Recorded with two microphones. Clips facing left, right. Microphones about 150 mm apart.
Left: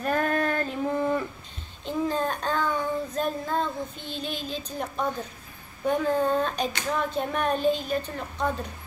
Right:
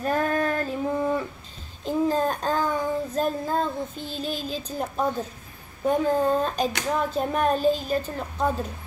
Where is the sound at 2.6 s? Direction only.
40° right (ahead or behind).